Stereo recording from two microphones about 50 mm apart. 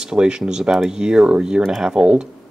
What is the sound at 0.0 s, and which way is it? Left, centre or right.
Speech, centre.